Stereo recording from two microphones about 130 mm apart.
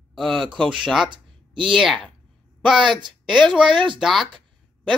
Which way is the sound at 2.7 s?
35° right (ahead or behind).